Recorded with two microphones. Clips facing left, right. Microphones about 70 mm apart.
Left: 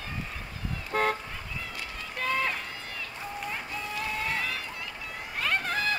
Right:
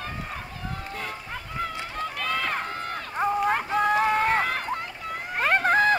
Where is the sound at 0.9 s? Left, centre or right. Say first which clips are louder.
Left 11 dB; left.